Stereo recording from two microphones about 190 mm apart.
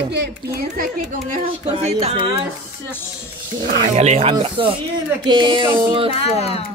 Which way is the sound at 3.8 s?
35° right (ahead or behind).